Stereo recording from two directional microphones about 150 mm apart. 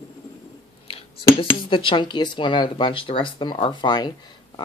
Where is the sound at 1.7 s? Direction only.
35° left (ahead or behind).